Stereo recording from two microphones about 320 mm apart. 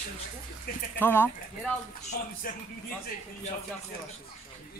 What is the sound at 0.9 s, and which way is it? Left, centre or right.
Speech, centre.